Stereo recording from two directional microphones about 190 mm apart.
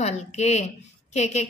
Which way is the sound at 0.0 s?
35° left (ahead or behind).